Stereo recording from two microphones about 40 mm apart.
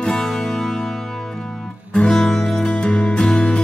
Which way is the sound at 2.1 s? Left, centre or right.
Centre.